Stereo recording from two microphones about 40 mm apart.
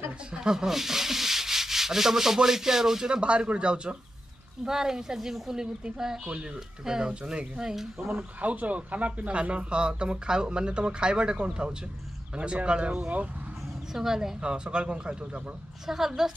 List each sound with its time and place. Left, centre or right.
0.3 s sanding: centre
3.2 s speech: right
4.6 s a woman's voice: centre
8.2 s speech: right
13.9 s a woman's voice: centre
14.4 s speech: right
15.9 s a woman's voice: centre